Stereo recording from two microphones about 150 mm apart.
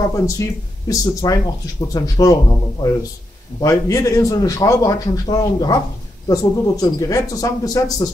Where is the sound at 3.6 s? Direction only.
20° left (ahead or behind).